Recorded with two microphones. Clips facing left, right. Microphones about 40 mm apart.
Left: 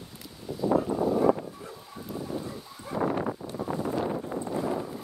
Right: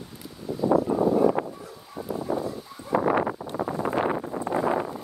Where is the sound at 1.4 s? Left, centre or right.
Right.